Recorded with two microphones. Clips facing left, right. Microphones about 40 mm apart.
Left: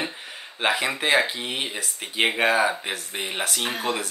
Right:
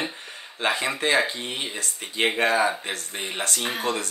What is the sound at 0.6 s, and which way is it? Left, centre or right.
Speech, centre.